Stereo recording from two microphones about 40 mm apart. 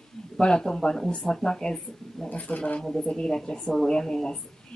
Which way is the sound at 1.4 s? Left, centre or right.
Centre.